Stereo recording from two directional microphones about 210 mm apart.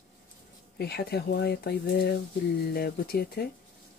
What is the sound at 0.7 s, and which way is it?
Speech, 50° left (ahead or behind).